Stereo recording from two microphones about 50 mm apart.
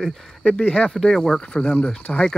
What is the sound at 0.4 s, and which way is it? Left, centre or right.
Cricket, centre.